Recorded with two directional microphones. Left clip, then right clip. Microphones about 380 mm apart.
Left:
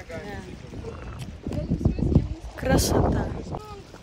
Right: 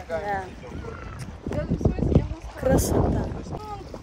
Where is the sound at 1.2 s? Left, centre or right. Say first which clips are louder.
Right 3 dB; centre.